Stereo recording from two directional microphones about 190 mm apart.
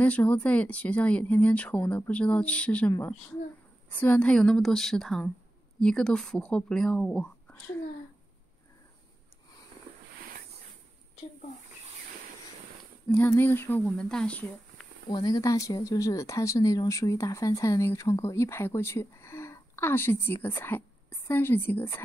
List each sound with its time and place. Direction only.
0.0 s speech: 10° left (ahead or behind)
13.1 s speech: 10° left (ahead or behind)
15.0 s speech: 20° left (ahead or behind)